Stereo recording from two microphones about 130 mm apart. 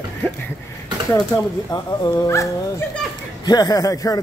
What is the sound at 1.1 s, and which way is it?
Speech, 25° left (ahead or behind).